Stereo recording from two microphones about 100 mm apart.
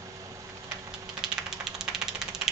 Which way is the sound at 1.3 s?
5° right (ahead or behind).